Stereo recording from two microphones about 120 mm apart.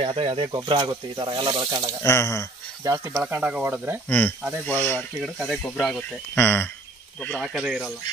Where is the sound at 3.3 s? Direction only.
15° right (ahead or behind).